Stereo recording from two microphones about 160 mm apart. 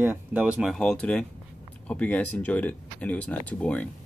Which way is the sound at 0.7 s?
5° left (ahead or behind).